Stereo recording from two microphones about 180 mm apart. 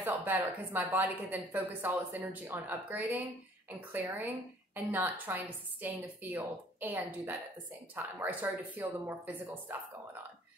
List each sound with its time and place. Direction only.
0.0 s a woman's voice: 10° right (ahead or behind)